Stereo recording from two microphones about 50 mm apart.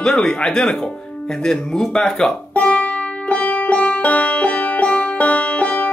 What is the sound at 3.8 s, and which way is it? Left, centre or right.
Music, left.